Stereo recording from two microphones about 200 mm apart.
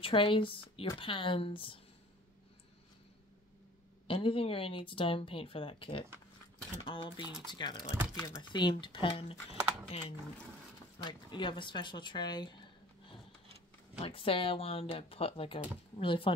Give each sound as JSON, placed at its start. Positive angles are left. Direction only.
{"t": 0.0, "sound": "speech", "side_deg": 25}
{"t": 4.1, "sound": "speech", "side_deg": 25}
{"t": 14.0, "sound": "speech", "side_deg": 25}